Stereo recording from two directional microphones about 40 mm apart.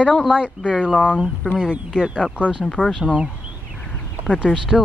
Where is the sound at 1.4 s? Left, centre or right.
Left.